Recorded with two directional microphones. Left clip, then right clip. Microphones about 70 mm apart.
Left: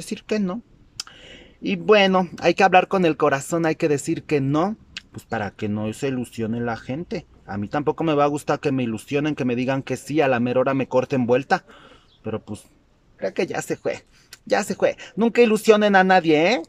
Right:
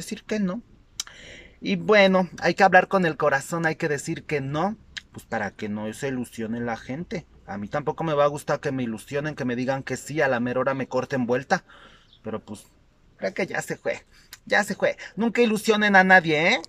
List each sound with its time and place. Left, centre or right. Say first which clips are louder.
0.0 s a sound: left 4 dB; left
2.2 s speech: left 2 dB; left
15.3 s speech: left 6 dB; left